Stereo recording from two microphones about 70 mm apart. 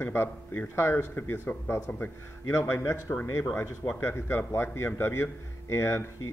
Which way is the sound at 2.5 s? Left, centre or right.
Left.